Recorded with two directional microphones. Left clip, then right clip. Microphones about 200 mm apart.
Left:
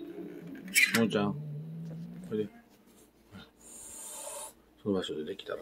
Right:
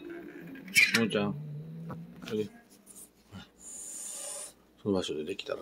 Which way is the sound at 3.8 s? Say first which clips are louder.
Right 3 dB; centre (ahead or behind).